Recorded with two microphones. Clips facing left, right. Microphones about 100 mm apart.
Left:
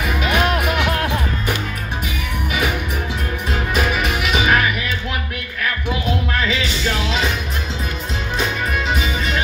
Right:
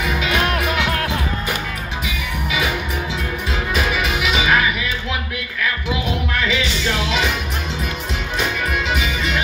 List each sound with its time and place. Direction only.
3.9 s music: 50° left (ahead or behind)
8.9 s music: 35° left (ahead or behind)